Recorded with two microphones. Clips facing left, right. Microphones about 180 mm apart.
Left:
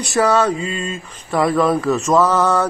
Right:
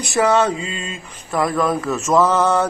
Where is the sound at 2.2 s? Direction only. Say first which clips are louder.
Right 3 dB; 20° right (ahead or behind).